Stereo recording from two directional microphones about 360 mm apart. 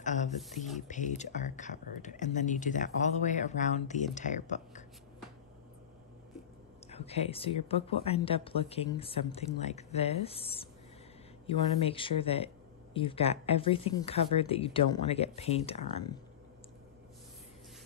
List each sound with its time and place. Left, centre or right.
0.0 s a sound: centre
0.7 s speech: centre
6.9 s speech: centre